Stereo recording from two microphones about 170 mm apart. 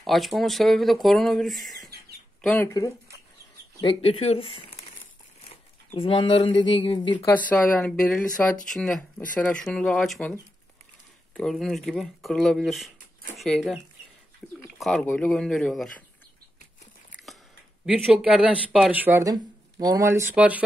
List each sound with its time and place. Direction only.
0.0 s speech: centre (ahead or behind)
3.8 s speech: 30° left (ahead or behind)
5.9 s speech: 30° left (ahead or behind)
7.3 s speech: 10° left (ahead or behind)
11.3 s speech: centre (ahead or behind)
17.8 s speech: 5° right (ahead or behind)